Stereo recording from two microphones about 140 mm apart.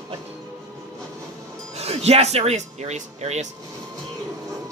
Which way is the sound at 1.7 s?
50° right (ahead or behind).